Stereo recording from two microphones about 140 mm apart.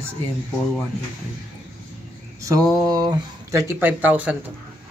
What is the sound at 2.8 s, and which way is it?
Speech, 30° right (ahead or behind).